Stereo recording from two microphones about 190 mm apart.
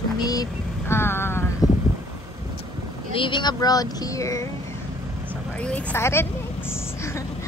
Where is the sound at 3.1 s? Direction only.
25° left (ahead or behind).